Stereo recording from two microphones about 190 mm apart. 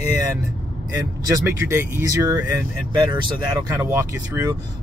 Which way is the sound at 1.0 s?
15° right (ahead or behind).